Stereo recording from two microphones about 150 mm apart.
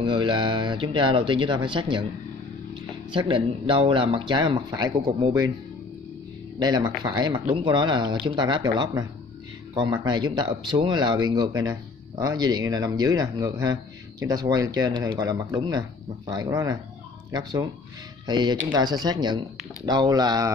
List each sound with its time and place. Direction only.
0.0 s speech: 30° right (ahead or behind)
6.6 s speech: 30° right (ahead or behind)